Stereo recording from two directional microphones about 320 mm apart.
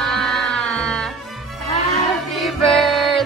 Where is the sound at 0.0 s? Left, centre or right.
Centre.